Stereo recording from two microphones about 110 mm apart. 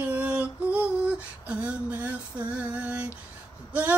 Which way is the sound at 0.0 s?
15° right (ahead or behind).